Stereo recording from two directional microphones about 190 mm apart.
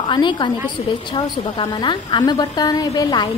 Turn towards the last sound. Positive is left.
turn(degrees=20)  # may be behind; listen again after turning